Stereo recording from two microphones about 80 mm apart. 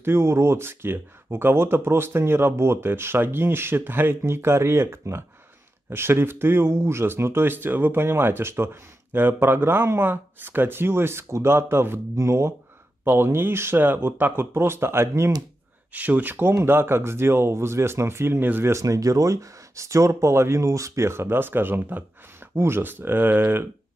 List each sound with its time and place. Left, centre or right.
0.0 s speech: right
15.9 s speech: right